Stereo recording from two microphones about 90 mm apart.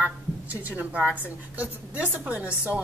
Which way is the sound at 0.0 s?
15° right (ahead or behind).